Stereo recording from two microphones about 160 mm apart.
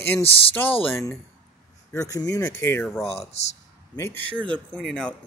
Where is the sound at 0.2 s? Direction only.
35° left (ahead or behind).